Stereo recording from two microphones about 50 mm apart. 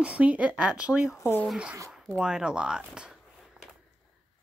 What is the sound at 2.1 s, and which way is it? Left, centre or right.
Speech, centre.